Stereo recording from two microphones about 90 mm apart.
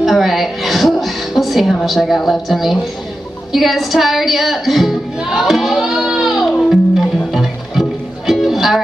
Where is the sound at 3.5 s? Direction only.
Centre (ahead or behind).